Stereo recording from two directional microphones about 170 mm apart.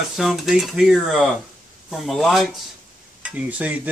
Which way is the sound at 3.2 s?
10° right (ahead or behind).